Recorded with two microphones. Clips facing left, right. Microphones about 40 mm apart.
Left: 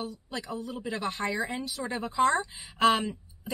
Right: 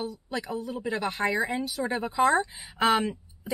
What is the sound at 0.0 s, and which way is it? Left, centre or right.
Speech, centre.